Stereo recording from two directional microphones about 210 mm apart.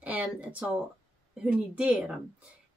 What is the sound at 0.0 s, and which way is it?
Speech, 5° right (ahead or behind).